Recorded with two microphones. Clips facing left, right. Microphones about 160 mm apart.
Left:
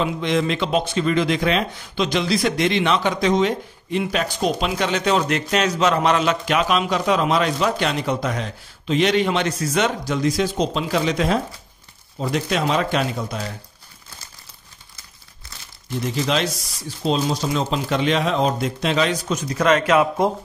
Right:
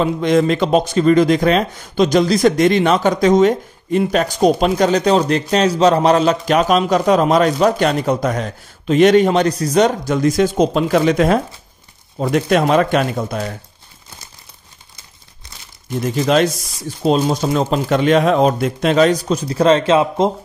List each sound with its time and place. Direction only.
0.0 s speech: 45° right (ahead or behind)
17.0 s speech: 50° right (ahead or behind); by 20.3 s 25° right (ahead or behind)